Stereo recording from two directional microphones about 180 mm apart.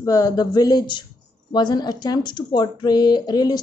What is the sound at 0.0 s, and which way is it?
Speech, 20° left (ahead or behind).